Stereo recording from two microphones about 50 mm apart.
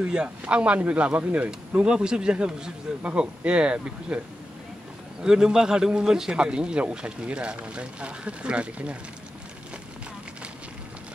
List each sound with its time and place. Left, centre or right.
0.0 s speech: centre
5.2 s a man's voice: centre